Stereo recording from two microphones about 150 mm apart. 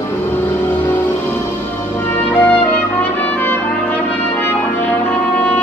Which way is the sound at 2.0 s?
15° left (ahead or behind).